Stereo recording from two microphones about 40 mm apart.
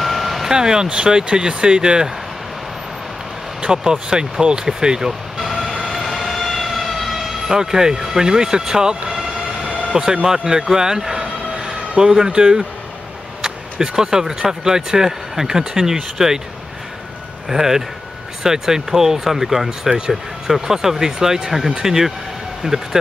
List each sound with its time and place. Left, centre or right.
0.0 s vehicle: centre
0.5 s speech: centre
3.6 s speech: right
5.4 s vehicle: centre
5.9 s siren: centre
10.2 s speech: centre
17.5 s speech: centre